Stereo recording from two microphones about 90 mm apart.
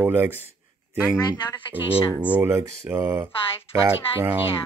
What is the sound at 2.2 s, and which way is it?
Speech, 15° right (ahead or behind).